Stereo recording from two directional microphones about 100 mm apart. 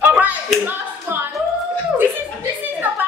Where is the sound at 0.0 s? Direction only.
15° right (ahead or behind).